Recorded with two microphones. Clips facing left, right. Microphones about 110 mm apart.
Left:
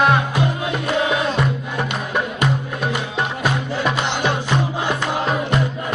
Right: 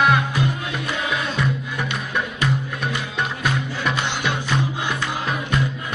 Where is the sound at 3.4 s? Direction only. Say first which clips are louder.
Left 4 dB; 30° left (ahead or behind).